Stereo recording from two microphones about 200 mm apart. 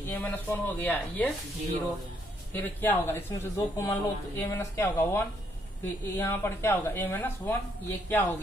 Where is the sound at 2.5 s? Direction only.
10° left (ahead or behind).